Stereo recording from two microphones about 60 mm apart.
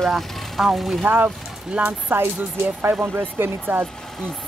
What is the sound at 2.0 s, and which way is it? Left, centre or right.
Speech, right.